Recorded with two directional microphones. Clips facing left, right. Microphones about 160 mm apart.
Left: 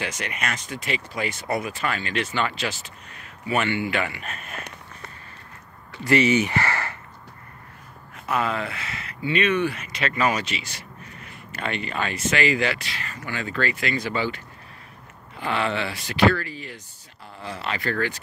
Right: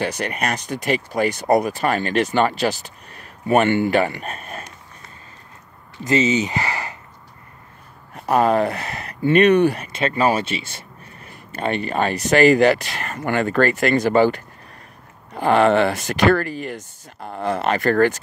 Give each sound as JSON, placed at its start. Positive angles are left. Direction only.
{"t": 0.2, "sound": "speech", "side_deg": -35}
{"t": 6.0, "sound": "speech", "side_deg": -20}
{"t": 8.1, "sound": "speech", "side_deg": -40}
{"t": 9.9, "sound": "speech", "side_deg": -30}
{"t": 11.5, "sound": "speech", "side_deg": -40}